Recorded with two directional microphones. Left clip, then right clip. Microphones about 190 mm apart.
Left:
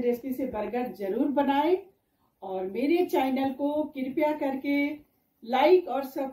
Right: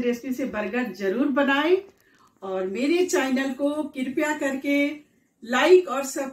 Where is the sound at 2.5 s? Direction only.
5° left (ahead or behind).